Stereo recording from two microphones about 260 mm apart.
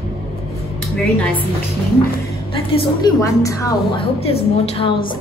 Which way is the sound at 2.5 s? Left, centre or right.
Centre.